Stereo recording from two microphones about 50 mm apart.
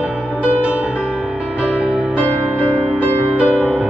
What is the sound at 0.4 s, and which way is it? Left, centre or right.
Music, right.